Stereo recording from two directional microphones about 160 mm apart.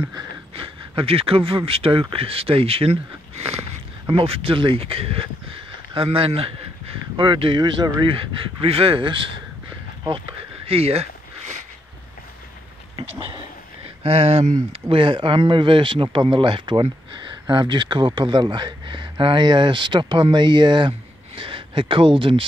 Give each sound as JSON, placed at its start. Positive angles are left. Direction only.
{"t": 0.6, "sound": "speech", "side_deg": -35}
{"t": 10.7, "sound": "a sound", "side_deg": -40}
{"t": 13.8, "sound": "speech", "side_deg": -40}